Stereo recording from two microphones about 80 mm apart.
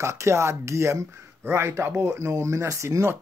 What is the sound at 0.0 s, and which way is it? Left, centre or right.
Speech, right.